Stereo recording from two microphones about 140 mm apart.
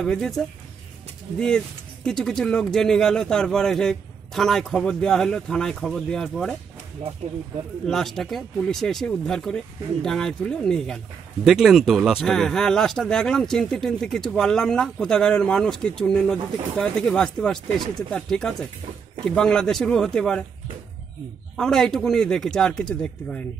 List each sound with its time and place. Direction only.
0.0 s speech: 5° left (ahead or behind)
2.0 s speech: 5° left (ahead or behind)
7.8 s speech: centre (ahead or behind)
21.5 s speech: 5° left (ahead or behind)